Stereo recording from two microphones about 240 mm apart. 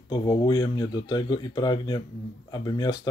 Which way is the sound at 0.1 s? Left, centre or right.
Centre.